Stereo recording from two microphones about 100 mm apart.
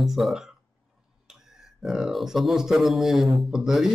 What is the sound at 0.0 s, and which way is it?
Speech, 5° right (ahead or behind).